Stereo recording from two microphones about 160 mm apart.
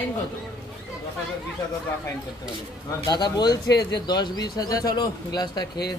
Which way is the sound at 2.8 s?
25° left (ahead or behind).